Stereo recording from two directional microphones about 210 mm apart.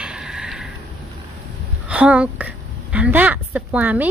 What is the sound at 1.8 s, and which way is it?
A woman's voice, 5° right (ahead or behind).